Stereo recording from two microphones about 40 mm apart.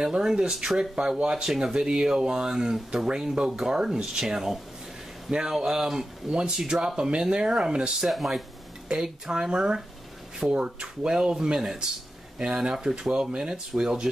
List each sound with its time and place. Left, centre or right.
0.0 s speech: centre
8.1 s speech: centre
8.9 s speech: centre